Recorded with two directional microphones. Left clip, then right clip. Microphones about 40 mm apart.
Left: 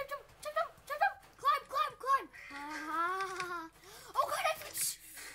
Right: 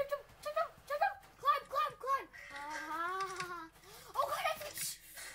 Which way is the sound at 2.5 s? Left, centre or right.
Centre.